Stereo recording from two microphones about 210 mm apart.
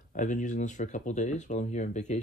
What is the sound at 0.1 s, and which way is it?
Speech, 35° left (ahead or behind).